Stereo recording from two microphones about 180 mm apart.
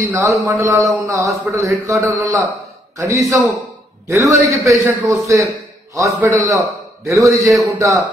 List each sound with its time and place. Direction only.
0.1 s a man's voice: 15° right (ahead or behind)